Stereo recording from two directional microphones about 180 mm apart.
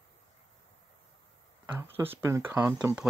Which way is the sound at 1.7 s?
15° right (ahead or behind).